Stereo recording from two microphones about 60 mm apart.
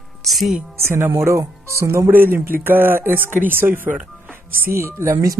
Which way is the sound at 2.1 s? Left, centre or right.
Right.